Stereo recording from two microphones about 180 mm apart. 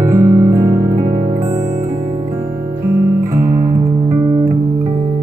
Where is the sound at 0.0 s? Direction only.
20° right (ahead or behind).